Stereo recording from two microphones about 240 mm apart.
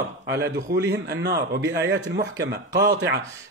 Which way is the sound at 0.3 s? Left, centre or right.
Right.